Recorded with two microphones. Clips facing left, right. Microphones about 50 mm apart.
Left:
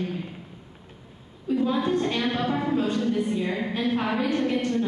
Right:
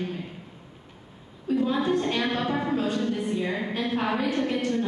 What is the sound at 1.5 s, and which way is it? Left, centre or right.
A woman's voice, centre.